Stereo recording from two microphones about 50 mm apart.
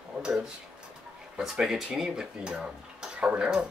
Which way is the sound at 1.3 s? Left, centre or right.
Centre.